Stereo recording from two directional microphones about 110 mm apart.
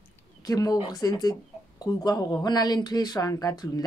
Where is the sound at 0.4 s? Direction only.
35° left (ahead or behind).